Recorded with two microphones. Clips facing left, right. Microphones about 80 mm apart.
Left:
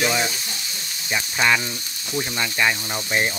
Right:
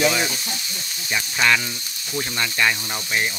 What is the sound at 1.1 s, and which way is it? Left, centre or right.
Speech, centre.